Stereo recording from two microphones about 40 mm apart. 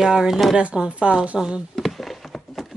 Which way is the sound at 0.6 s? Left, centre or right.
Right.